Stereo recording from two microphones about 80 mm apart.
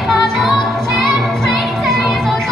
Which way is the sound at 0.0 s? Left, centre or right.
Centre.